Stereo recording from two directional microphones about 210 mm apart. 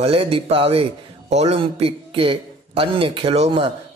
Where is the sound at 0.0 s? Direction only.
25° right (ahead or behind).